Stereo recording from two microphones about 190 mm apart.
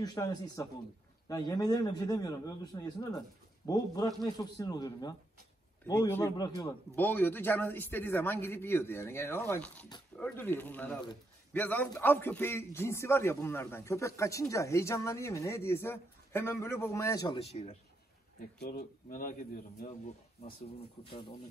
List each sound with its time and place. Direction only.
0.0 s a man's voice: 20° left (ahead or behind)
7.0 s a man's voice: 10° left (ahead or behind)
17.4 s speech: 35° left (ahead or behind)
18.6 s a man's voice: 50° left (ahead or behind)
21.0 s a man's voice: 30° left (ahead or behind)